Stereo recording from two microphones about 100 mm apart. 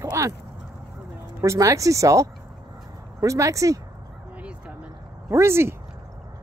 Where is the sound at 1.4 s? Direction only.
30° right (ahead or behind).